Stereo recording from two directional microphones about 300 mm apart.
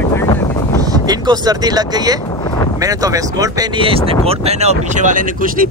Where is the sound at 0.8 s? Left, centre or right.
Centre.